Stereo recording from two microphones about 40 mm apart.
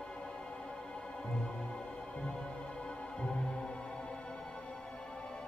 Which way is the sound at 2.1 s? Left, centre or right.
Left.